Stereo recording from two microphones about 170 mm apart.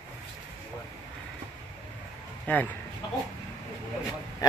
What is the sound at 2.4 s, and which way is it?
Speech, 10° left (ahead or behind).